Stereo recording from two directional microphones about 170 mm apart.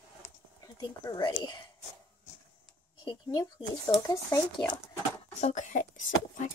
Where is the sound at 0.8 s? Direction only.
25° left (ahead or behind).